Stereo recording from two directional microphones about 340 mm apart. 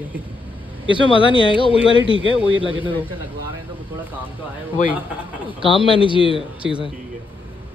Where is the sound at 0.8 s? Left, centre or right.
Centre.